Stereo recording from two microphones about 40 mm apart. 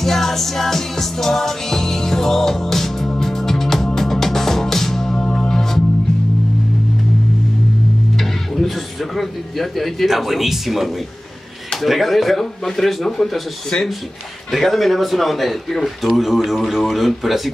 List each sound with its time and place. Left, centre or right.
0.0 s music: centre
5.1 s music: left
8.2 s music: centre
10.0 s speech: centre
14.5 s speech: centre